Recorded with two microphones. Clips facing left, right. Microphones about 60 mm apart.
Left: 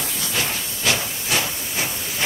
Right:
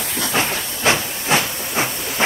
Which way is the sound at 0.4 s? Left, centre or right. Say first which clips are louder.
Right 4 dB; right.